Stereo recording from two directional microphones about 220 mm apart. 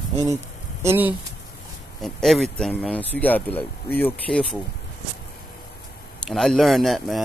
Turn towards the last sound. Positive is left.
turn(degrees=0)  # may be behind; listen again after turning